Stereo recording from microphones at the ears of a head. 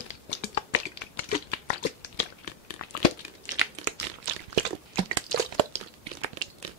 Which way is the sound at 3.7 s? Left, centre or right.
Right.